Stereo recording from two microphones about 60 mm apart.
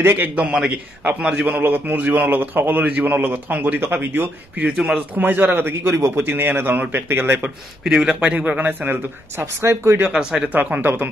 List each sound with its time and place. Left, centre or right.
0.1 s a man's voice: right
4.6 s a man's voice: centre
5.2 s a man's voice: right
7.9 s a man's voice: centre
9.4 s speech: right
10.0 s speech: centre
10.5 s a man's voice: right